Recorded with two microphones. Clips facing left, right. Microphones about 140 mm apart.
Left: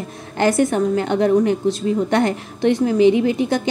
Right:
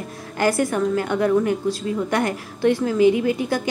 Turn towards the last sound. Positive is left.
turn(degrees=20)  # may be behind; listen again after turning